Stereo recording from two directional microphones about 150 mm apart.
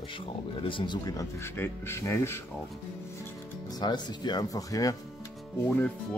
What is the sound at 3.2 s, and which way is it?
Music, 25° left (ahead or behind).